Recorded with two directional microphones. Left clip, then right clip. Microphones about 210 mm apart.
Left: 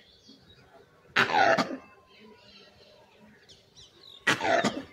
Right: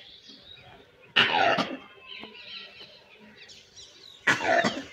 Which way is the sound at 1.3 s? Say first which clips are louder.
Left 1 dB; 10° right (ahead or behind).